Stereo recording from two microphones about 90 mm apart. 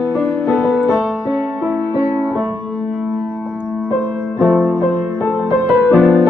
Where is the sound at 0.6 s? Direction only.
15° left (ahead or behind).